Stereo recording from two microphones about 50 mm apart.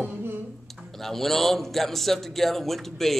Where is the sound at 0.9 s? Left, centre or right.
Centre.